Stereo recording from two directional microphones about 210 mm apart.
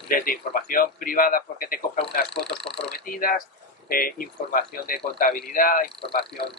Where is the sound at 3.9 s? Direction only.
45° left (ahead or behind).